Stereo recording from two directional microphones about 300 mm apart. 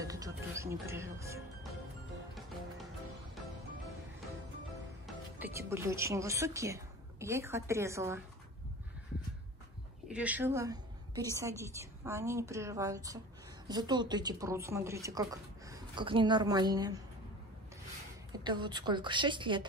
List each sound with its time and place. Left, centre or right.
0.0 s music: centre
5.0 s speech: centre
10.0 s a woman's voice: centre
18.3 s a woman's voice: centre